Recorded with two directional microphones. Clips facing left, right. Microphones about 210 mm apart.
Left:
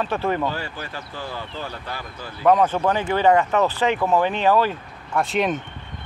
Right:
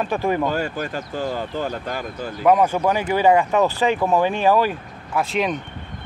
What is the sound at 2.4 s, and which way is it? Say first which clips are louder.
Speech: right 1 dB; 10° right (ahead or behind).